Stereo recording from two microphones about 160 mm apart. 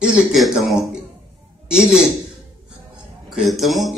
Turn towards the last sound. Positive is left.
turn(degrees=0)  # may be behind; listen again after turning